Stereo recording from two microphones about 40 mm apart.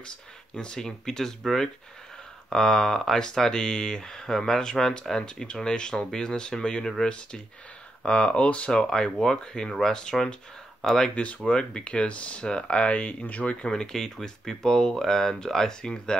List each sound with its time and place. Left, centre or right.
0.0 s speech: left
2.5 s speech: centre
5.2 s speech: left
8.7 s speech: centre
11.1 s speech: left
13.7 s speech: centre